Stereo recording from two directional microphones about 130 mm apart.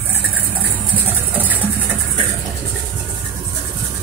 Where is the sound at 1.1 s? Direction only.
15° right (ahead or behind).